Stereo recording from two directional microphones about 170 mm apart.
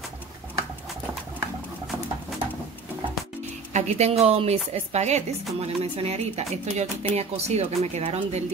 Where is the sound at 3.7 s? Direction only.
40° right (ahead or behind).